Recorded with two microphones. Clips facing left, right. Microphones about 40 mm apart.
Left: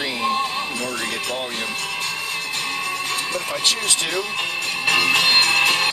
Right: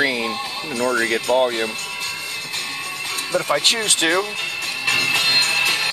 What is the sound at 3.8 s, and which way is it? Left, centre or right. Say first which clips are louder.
Speech: right 4 dB; right.